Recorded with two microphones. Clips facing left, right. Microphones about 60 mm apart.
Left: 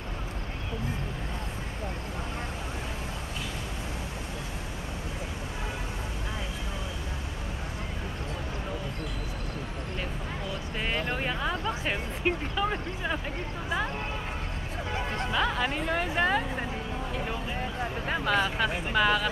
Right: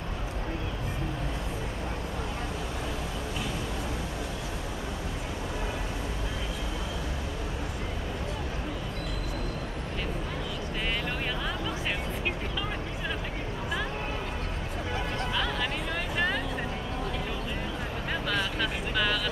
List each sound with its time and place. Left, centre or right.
11.0 s a sound: left
15.3 s music: left
18.1 s vehicle: left